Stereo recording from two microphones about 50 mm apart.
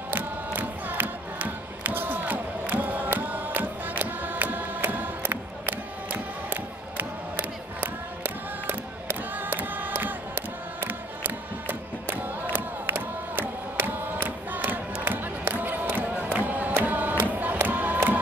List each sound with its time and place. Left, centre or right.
0.1 s music: right
15.5 s crowd: right
17.3 s music: right